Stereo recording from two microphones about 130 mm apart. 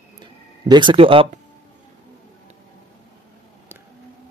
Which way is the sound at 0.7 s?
35° right (ahead or behind).